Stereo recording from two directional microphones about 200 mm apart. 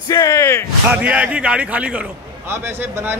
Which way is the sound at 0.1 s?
15° left (ahead or behind).